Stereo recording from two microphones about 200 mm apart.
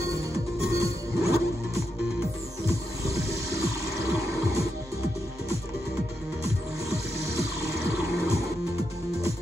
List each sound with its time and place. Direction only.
0.3 s music: 15° right (ahead or behind)
2.6 s wild animals: 15° right (ahead or behind)
6.9 s music: 15° right (ahead or behind)